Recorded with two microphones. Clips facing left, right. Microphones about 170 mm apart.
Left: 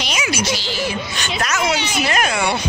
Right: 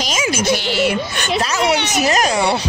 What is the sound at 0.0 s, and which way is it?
A woman's voice, 45° right (ahead or behind).